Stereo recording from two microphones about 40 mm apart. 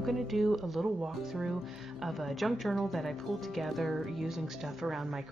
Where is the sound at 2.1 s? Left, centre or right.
Centre.